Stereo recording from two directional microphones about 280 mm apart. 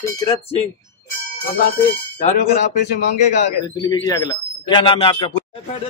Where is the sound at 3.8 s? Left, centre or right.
Centre.